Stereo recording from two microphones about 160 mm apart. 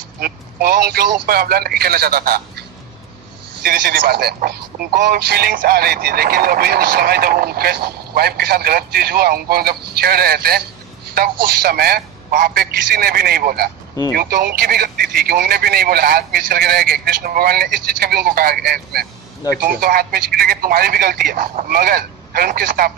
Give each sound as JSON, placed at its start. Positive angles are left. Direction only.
{"t": 0.2, "sound": "speech", "side_deg": -75}
{"t": 3.6, "sound": "speech", "side_deg": -75}
{"t": 19.6, "sound": "speech", "side_deg": -65}